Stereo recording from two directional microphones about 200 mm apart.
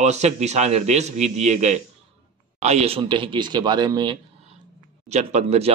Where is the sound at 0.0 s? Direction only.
35° right (ahead or behind).